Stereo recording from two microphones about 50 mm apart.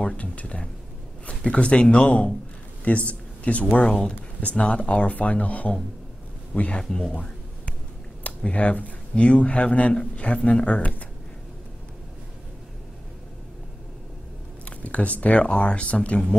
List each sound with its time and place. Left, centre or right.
0.0 s speech: left
6.8 s speech: centre
8.2 s speech: left
14.6 s speech: left